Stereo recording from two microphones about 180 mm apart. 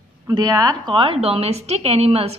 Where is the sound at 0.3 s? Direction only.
20° right (ahead or behind).